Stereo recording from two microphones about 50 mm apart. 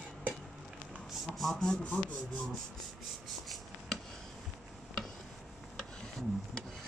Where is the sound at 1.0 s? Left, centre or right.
Centre.